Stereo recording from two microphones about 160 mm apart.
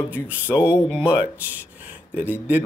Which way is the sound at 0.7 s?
15° left (ahead or behind).